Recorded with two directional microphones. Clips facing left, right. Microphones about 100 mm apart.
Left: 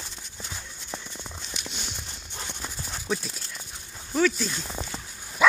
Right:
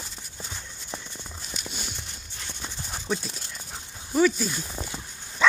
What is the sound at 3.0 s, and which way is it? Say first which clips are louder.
Speech: even; centre (ahead or behind).